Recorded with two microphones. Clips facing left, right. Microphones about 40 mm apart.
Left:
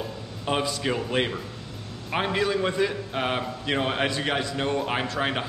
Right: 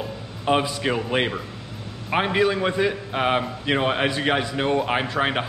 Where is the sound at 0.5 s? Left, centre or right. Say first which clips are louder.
Right 4 dB; centre.